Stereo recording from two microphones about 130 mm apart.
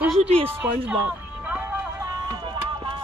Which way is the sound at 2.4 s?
35° right (ahead or behind).